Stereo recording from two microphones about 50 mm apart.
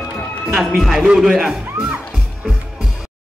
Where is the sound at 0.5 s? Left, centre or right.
Centre.